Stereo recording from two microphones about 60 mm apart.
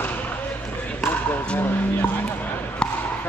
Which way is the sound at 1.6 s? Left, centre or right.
Left.